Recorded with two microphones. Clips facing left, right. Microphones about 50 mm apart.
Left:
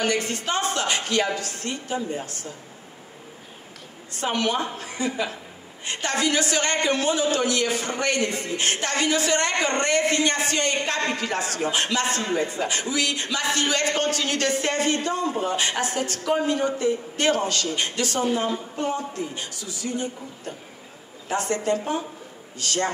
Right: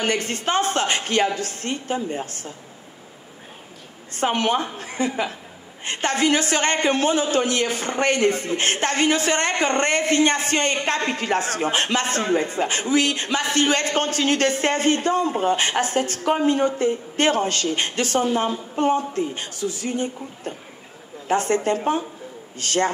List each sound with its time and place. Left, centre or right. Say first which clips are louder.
0.0 s a man's voice: right 1 dB; right
4.1 s a man's voice: right 4 dB; right